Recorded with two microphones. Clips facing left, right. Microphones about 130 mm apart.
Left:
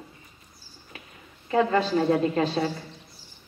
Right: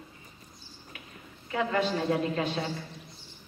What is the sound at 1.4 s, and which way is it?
A woman's voice, 30° left (ahead or behind).